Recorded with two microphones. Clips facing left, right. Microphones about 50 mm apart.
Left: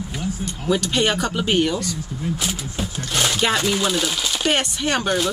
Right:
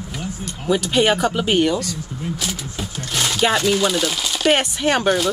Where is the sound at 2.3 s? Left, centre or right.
Left.